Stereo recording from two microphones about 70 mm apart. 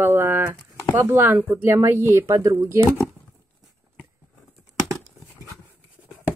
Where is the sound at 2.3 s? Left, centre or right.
Right.